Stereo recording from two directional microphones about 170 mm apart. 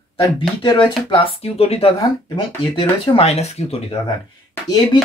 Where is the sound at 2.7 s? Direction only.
30° left (ahead or behind).